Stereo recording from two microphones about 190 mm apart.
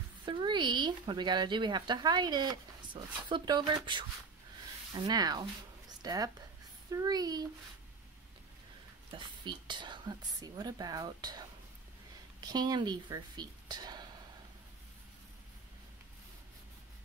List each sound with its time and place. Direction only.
0.2 s speech: 25° right (ahead or behind)
9.1 s speech: 25° right (ahead or behind)